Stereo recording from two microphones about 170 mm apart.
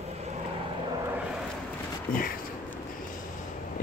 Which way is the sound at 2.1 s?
55° left (ahead or behind).